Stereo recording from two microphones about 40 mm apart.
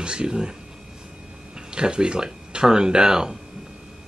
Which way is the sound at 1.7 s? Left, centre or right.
Right.